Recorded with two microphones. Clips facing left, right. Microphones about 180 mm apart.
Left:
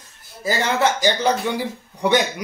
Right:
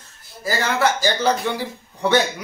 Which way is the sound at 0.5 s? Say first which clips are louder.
Left 1 dB; 20° left (ahead or behind).